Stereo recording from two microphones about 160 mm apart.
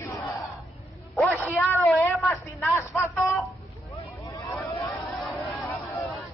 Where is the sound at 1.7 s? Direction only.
15° left (ahead or behind).